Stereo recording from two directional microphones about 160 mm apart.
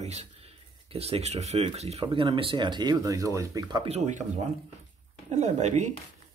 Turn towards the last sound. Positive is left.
turn(degrees=-45)  # may be behind; listen again after turning